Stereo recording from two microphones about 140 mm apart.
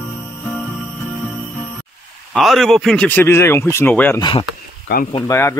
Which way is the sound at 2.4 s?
Centre (ahead or behind).